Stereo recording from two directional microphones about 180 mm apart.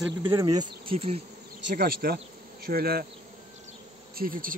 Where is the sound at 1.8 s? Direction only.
55° right (ahead or behind).